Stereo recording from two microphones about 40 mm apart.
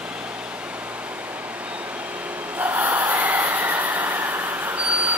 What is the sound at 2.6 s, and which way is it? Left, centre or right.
Train, right.